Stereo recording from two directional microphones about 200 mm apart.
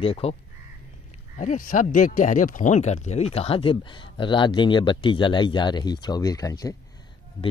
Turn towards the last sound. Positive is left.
turn(degrees=20)  # may be behind; listen again after turning